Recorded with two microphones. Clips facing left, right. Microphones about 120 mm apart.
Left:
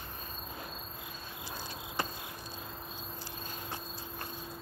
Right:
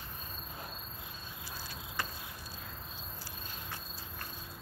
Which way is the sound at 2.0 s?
20° left (ahead or behind).